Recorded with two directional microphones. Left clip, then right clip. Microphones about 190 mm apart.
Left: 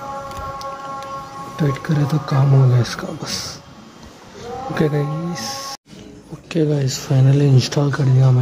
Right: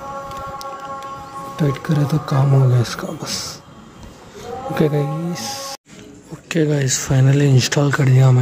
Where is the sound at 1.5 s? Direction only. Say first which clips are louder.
Right 1 dB; 5° right (ahead or behind).